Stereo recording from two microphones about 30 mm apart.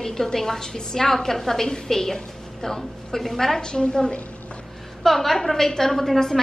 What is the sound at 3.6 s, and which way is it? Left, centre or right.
Speech, left.